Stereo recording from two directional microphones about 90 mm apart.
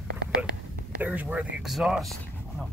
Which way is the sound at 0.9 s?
20° right (ahead or behind).